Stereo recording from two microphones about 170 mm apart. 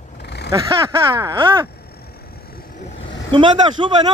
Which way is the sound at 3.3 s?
30° right (ahead or behind).